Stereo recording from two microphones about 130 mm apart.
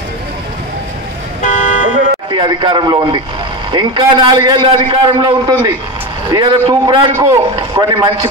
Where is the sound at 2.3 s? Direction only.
35° right (ahead or behind).